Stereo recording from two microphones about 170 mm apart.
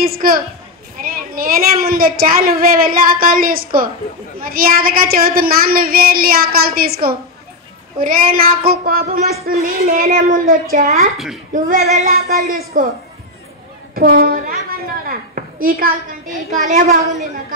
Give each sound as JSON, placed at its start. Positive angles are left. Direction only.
{"t": 0.0, "sound": "a woman's voice", "side_deg": -60}
{"t": 13.9, "sound": "a woman's voice", "side_deg": -60}
{"t": 16.6, "sound": "a woman's voice", "side_deg": -45}